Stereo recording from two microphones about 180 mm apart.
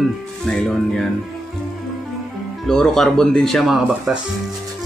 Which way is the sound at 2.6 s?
5° left (ahead or behind).